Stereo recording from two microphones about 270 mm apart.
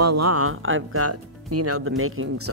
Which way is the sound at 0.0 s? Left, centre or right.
Right.